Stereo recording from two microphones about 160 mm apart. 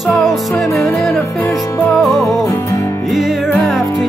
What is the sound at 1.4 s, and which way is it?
Music, 15° left (ahead or behind).